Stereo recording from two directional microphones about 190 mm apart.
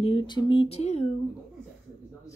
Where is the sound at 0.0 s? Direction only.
25° left (ahead or behind).